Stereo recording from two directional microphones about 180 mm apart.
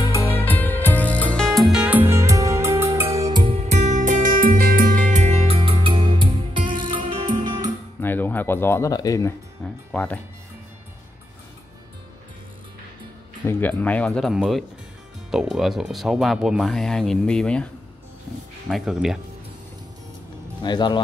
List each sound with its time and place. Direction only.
0.0 s music: 15° left (ahead or behind); by 7.7 s 25° right (ahead or behind)
8.0 s a sound: 10° left (ahead or behind)
9.6 s music: 5° left (ahead or behind)
13.5 s speech: 10° left (ahead or behind)
18.7 s speech: centre (ahead or behind)
20.6 s speech: 25° left (ahead or behind)